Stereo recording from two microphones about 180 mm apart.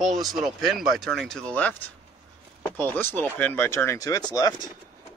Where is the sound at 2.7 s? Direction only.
10° left (ahead or behind).